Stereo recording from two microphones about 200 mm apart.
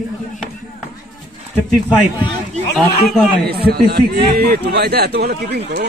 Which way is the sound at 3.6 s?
50° right (ahead or behind).